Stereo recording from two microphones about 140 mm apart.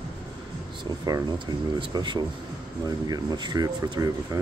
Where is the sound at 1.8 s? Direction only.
35° right (ahead or behind).